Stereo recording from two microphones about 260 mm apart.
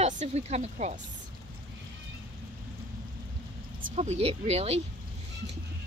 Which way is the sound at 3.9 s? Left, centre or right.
Right.